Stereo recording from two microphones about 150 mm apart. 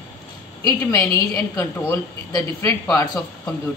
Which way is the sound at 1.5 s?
15° left (ahead or behind).